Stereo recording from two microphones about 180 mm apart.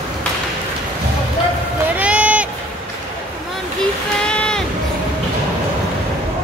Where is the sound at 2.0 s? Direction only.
5° right (ahead or behind).